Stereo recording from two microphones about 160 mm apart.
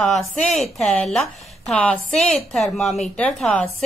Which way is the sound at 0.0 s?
Centre (ahead or behind).